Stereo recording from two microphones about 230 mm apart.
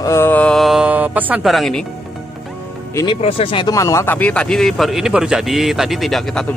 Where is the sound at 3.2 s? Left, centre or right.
Left.